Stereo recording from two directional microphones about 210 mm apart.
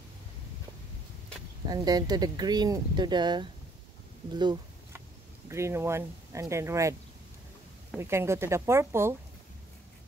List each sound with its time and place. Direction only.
1.7 s speech: 20° right (ahead or behind)
4.4 s a sound: 20° right (ahead or behind)
5.5 s speech: 15° right (ahead or behind)
8.0 s speech: 10° right (ahead or behind)